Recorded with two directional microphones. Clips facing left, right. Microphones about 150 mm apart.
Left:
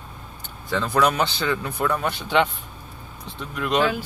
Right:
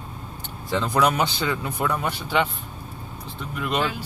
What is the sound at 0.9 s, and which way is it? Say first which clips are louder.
Speech: left 1 dB; 10° right (ahead or behind).